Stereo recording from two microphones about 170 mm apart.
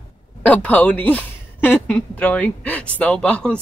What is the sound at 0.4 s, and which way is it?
Speech, 10° left (ahead or behind).